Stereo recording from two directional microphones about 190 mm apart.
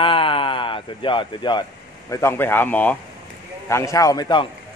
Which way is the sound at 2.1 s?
10° left (ahead or behind).